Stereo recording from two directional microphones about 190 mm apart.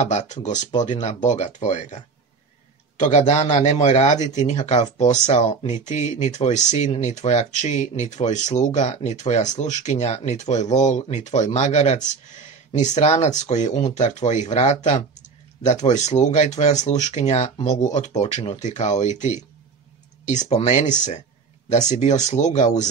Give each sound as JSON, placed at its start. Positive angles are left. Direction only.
{"t": 0.0, "sound": "a man's voice", "side_deg": 40}